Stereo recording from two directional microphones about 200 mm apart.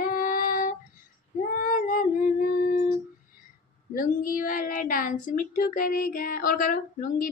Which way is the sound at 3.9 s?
45° left (ahead or behind).